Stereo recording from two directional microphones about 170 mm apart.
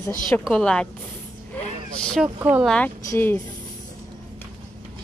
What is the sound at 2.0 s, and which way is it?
Speech, 5° left (ahead or behind).